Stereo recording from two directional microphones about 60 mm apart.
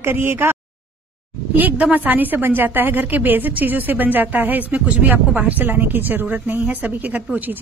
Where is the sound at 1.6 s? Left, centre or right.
Right.